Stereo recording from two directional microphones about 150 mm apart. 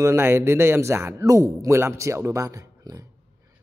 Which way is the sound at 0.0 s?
20° right (ahead or behind).